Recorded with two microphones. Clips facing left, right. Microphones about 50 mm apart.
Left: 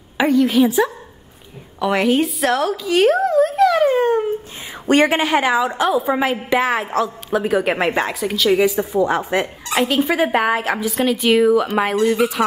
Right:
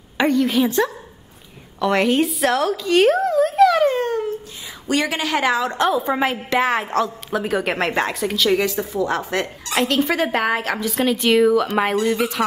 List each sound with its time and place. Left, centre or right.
0.2 s a woman's voice: centre
4.8 s a woman's voice: left
5.4 s a woman's voice: centre